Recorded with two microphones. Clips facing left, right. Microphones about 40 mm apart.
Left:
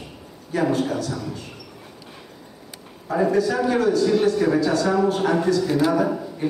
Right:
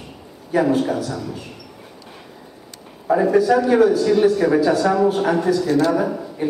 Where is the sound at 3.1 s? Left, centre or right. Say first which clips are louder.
Right 5 dB; centre.